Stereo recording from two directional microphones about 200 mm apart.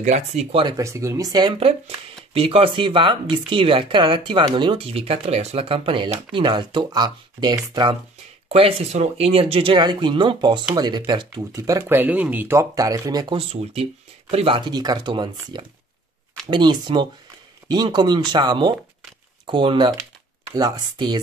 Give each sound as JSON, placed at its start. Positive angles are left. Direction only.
{"t": 0.0, "sound": "speech", "side_deg": -35}